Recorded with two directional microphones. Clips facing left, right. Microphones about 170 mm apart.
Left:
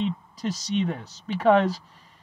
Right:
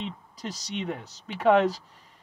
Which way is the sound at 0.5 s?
20° right (ahead or behind).